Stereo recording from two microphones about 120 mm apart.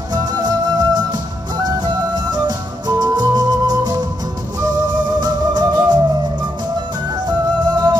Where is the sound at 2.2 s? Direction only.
35° right (ahead or behind).